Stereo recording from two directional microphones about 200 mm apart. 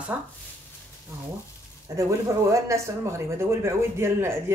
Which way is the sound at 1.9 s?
15° right (ahead or behind).